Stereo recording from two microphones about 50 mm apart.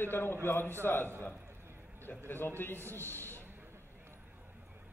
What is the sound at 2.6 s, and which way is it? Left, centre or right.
Speech, left.